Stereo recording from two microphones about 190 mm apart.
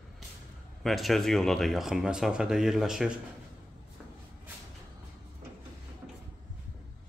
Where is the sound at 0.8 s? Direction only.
Centre (ahead or behind).